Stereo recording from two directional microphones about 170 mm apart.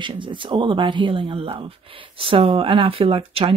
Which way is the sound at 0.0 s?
30° right (ahead or behind).